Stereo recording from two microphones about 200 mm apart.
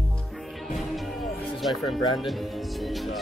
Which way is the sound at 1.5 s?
Centre (ahead or behind).